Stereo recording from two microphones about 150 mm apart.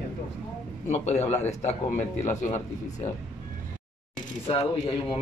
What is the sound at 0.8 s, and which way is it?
Speech, 50° left (ahead or behind).